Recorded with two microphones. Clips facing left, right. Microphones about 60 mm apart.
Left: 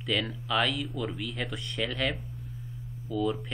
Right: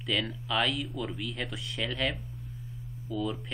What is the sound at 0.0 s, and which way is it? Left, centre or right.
Speech, centre.